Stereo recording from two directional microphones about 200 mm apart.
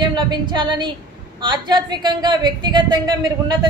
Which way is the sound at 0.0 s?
20° right (ahead or behind).